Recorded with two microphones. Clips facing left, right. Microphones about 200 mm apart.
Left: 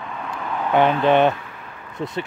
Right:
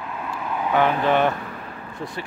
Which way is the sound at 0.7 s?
20° left (ahead or behind).